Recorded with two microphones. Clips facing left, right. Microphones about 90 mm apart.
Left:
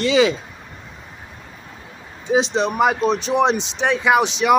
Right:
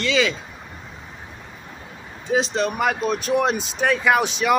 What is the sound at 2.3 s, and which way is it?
Speech, 5° left (ahead or behind).